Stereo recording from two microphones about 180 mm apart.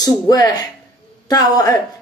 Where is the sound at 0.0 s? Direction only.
20° left (ahead or behind).